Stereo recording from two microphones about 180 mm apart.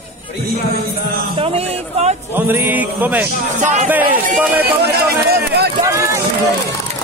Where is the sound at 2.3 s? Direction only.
10° right (ahead or behind).